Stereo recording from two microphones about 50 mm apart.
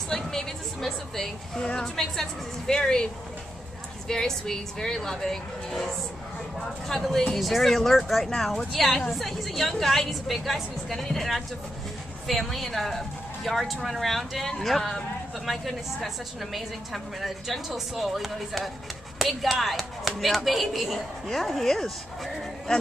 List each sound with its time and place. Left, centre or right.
0.1 s a woman's voice: centre
4.1 s a woman's voice: centre